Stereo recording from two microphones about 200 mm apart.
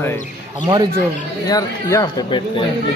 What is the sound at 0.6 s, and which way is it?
Speech, 20° right (ahead or behind).